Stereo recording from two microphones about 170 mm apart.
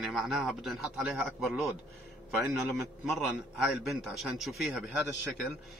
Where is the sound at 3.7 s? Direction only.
Centre (ahead or behind).